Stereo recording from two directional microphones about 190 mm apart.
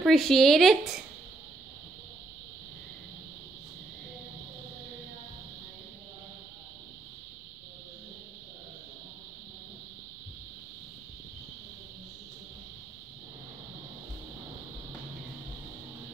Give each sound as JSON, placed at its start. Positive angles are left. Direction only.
{"t": 0.0, "sound": "speech", "side_deg": 0}